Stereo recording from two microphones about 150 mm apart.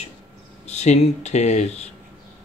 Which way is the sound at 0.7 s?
50° left (ahead or behind).